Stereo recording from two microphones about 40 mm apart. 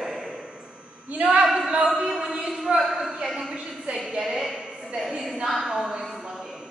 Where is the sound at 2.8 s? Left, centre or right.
Centre.